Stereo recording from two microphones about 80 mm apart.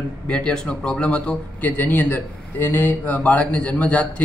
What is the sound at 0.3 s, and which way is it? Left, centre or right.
Speech, centre.